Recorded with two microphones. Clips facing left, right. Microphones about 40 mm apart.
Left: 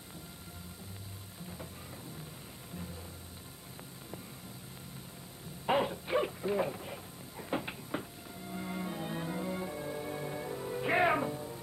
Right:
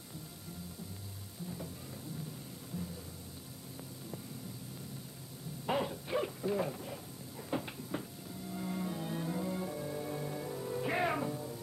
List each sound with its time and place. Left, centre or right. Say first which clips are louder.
5.7 s owl: left 4 dB; left